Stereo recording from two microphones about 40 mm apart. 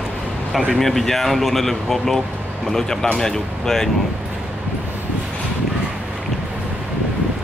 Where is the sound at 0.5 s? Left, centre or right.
Centre.